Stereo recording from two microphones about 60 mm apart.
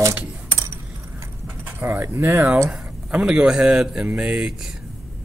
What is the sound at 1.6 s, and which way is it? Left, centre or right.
Speech, right.